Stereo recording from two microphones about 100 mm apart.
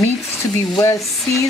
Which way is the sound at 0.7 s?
35° left (ahead or behind).